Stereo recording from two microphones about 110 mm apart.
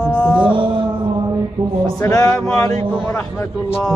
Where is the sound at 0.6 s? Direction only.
45° right (ahead or behind).